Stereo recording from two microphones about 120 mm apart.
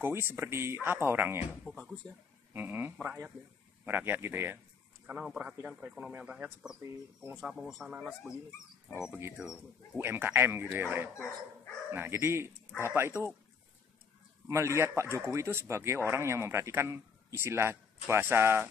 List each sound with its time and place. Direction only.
0.0 s speech: 20° right (ahead or behind)
1.6 s speech: centre (ahead or behind)
2.5 s speech: 15° right (ahead or behind)
9.4 s speech: 5° right (ahead or behind)
9.9 s speech: 15° right (ahead or behind)
14.5 s speech: 20° right (ahead or behind)